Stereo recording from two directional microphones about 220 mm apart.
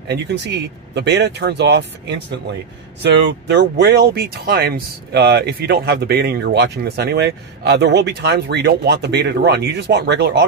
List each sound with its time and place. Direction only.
0.1 s speech: 50° right (ahead or behind)